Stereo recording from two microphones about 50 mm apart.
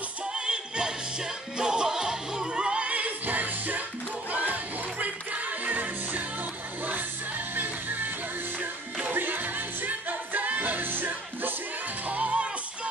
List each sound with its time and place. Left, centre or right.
0.3 s music: centre; by 8.1 s right
9.1 s music: right
12.1 s music: right